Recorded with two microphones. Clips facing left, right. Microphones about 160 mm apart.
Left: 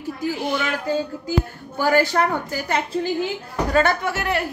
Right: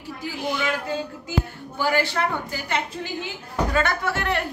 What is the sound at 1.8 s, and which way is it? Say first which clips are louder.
A woman's voice: left 5 dB; 45° left (ahead or behind).